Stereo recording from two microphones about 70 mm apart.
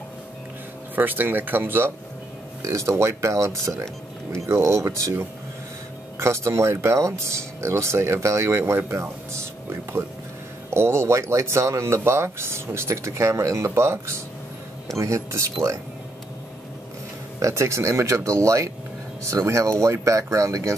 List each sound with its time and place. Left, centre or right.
0.9 s speech: right
2.6 s speech: right
17.4 s speech: right